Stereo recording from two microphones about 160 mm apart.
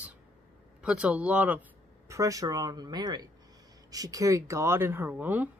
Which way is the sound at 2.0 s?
20° right (ahead or behind).